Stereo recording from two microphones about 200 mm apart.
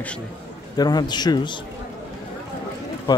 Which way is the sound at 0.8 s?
20° left (ahead or behind).